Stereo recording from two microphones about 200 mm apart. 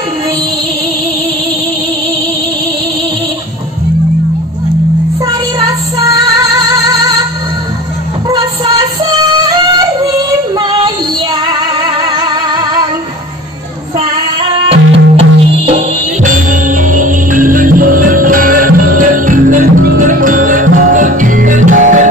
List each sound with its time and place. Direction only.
5.6 s music: 15° right (ahead or behind)
8.3 s music: 20° right (ahead or behind)
14.5 s music: 30° right (ahead or behind)